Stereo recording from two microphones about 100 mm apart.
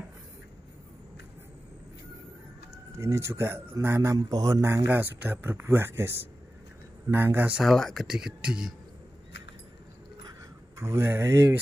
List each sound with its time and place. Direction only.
3.0 s speech: 30° right (ahead or behind)
4.8 s speech: 20° right (ahead or behind)
7.6 s speech: centre (ahead or behind)
10.8 s speech: 25° right (ahead or behind)